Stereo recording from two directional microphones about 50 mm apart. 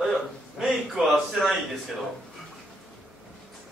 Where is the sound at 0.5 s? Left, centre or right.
Centre.